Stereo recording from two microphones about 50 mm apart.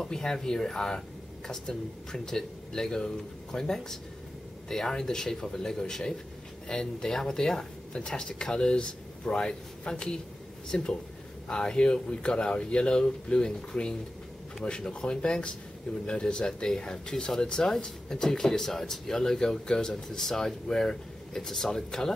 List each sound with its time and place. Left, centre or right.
0.0 s speech: centre